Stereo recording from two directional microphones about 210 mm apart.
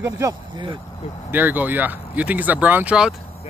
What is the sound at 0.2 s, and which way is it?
Speech, 25° right (ahead or behind).